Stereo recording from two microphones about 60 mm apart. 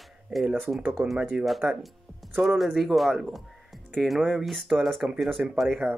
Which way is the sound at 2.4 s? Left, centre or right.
Centre.